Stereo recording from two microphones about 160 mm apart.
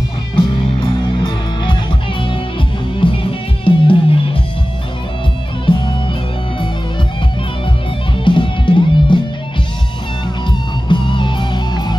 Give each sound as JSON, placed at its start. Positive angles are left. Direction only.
{"t": 0.4, "sound": "music", "side_deg": 35}
{"t": 5.7, "sound": "music", "side_deg": 35}
{"t": 8.2, "sound": "music", "side_deg": 30}
{"t": 10.9, "sound": "music", "side_deg": 30}